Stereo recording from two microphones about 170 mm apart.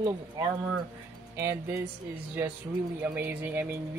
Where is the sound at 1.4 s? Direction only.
15° right (ahead or behind).